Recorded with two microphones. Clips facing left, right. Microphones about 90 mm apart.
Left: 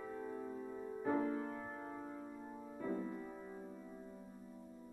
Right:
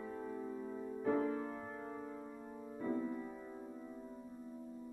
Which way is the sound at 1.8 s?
25° left (ahead or behind).